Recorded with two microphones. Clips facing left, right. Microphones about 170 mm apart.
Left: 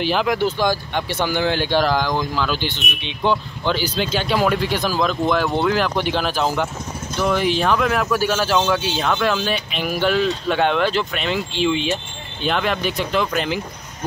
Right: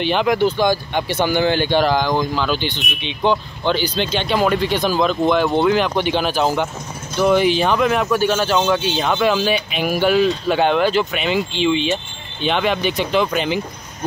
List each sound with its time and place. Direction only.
0.0 s speech: centre (ahead or behind)